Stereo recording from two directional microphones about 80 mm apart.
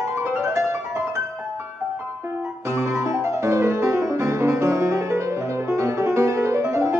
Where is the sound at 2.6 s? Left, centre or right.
Right.